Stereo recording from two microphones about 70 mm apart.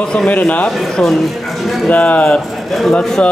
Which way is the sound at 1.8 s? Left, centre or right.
Left.